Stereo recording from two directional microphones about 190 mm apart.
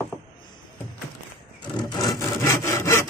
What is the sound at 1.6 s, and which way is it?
Sawing, 20° left (ahead or behind).